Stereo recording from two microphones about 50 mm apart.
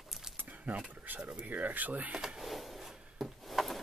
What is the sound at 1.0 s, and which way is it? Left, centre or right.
Speech, right.